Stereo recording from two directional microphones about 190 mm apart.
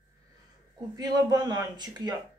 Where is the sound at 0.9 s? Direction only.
20° right (ahead or behind).